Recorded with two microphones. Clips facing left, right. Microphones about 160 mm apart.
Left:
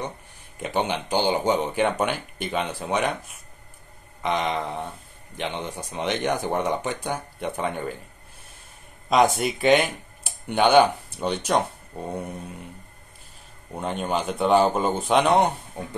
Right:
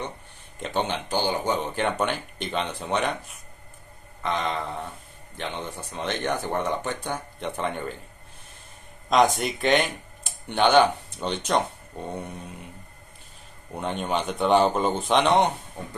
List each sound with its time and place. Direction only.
0.6 s speech: 10° left (ahead or behind)
9.4 s speech: 5° left (ahead or behind)
13.7 s speech: centre (ahead or behind)